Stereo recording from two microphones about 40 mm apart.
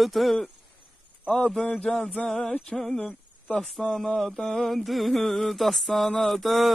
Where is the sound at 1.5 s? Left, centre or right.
Centre.